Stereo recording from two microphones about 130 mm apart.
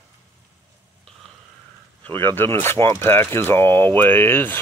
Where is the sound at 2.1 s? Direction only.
15° left (ahead or behind).